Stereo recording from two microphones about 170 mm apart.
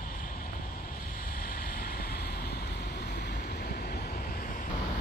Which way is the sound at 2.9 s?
85° left.